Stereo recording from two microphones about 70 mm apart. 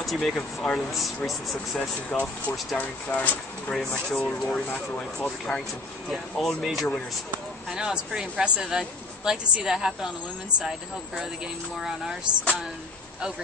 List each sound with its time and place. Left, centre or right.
0.0 s speech: centre
2.0 s speech: left
3.7 s speech: centre
4.7 s speech: centre
6.0 s speech: centre